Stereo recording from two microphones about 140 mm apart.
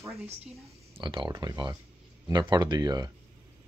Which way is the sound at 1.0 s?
35° right (ahead or behind).